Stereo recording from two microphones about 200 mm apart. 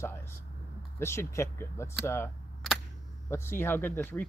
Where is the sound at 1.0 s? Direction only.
15° left (ahead or behind).